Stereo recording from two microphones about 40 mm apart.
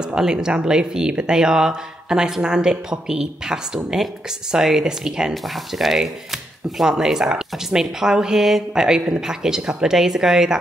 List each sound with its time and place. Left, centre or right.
0.0 s speech: centre
5.3 s speech: centre